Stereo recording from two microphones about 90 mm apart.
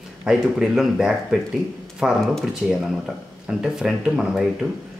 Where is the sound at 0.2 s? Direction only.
10° right (ahead or behind).